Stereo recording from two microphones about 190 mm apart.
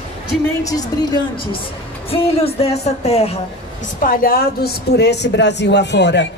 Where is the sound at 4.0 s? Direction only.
45° left (ahead or behind); by 6.3 s 65° left (ahead or behind).